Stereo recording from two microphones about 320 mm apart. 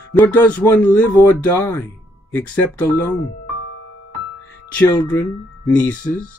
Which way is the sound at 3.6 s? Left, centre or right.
Left.